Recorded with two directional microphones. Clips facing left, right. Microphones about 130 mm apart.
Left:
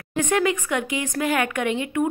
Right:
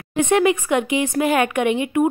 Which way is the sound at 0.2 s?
20° right (ahead or behind).